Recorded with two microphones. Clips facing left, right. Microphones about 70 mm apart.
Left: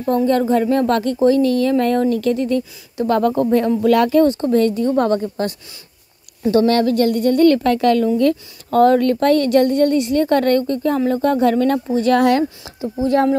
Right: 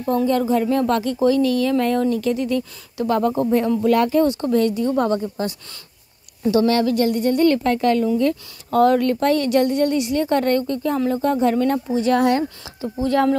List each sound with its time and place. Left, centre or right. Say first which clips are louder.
0.1 s a woman's voice: left 3 dB; left
1.2 s speech: left 3 dB; left
4.2 s a woman's voice: left 3 dB; left
6.5 s a woman's voice: left 3 dB; left
7.7 s speech: left 3 dB; left
8.7 s a woman's voice: left 3 dB; left
10.7 s speech: left 3 dB; left
12.0 s speech: left 3 dB; left
12.9 s speech: left 2 dB; left